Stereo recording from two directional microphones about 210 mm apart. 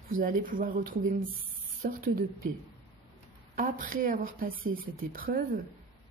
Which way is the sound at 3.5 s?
40° right (ahead or behind).